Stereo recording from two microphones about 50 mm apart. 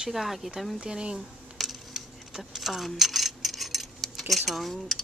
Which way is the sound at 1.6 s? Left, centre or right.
Centre.